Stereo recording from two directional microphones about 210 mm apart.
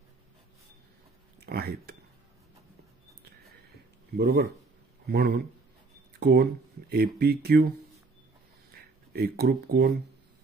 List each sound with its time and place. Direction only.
1.4 s speech: 50° right (ahead or behind)
4.2 s speech: 50° right (ahead or behind)
8.7 s speech: 50° right (ahead or behind)